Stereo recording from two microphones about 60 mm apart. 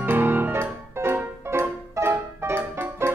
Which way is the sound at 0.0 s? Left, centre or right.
Right.